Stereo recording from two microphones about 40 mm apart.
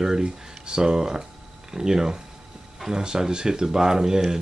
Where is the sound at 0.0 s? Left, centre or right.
Centre.